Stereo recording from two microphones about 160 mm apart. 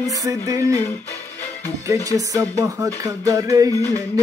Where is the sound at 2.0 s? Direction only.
20° right (ahead or behind).